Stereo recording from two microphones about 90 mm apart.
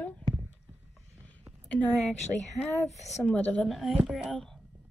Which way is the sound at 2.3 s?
15° right (ahead or behind).